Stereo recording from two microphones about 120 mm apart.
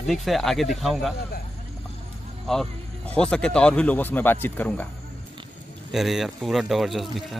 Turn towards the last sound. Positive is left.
turn(degrees=0)  # may be behind; listen again after turning